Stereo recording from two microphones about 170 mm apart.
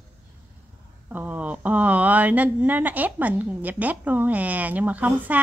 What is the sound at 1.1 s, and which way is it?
Speech, 10° right (ahead or behind).